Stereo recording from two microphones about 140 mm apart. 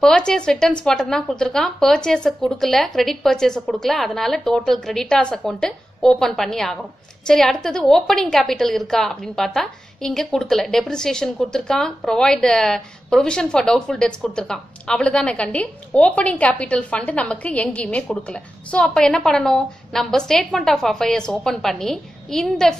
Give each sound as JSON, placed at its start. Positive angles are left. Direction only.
{"t": 0.0, "sound": "a woman's voice", "side_deg": 5}